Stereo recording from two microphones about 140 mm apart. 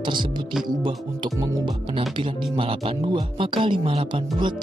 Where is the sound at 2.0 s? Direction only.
40° right (ahead or behind).